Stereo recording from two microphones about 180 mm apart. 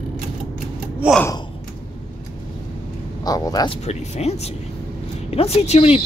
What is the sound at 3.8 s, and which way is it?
Speech, 35° left (ahead or behind).